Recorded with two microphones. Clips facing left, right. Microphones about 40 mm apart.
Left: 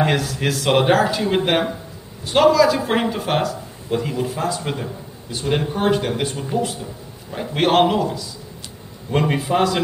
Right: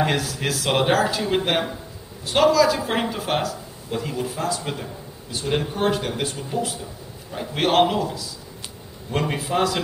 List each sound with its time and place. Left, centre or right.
0.0 s speech: centre